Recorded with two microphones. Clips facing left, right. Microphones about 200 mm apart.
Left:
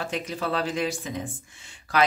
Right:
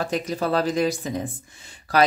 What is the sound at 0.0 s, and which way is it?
Speech, 40° right (ahead or behind).